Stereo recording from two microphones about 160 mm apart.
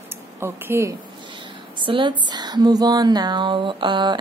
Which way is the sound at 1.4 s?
30° right (ahead or behind).